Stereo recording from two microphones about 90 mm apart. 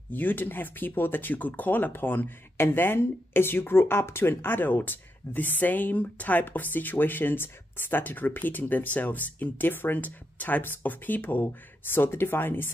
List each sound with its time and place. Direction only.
0.1 s speech: 20° left (ahead or behind)